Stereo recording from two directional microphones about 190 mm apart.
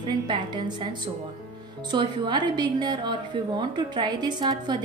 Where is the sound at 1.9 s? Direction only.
25° right (ahead or behind).